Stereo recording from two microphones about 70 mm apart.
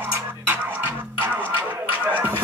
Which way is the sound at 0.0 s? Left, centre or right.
Right.